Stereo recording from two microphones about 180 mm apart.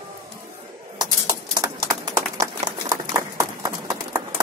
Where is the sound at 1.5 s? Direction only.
20° right (ahead or behind).